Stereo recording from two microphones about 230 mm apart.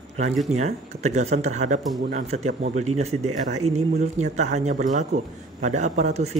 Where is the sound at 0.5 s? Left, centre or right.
Right.